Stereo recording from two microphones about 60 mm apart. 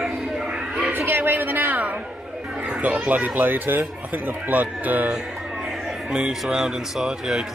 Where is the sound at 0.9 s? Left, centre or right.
Right.